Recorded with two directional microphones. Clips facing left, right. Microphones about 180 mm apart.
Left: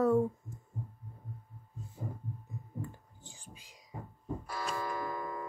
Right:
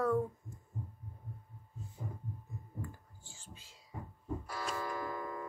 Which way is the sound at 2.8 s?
20° left (ahead or behind).